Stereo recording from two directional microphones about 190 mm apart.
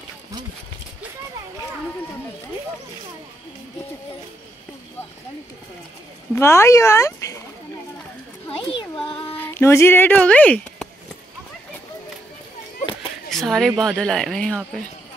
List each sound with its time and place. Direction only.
6.3 s speech: 15° left (ahead or behind)
8.5 s a sound: 30° left (ahead or behind)
9.4 s speech: 15° left (ahead or behind)
13.3 s speech: centre (ahead or behind)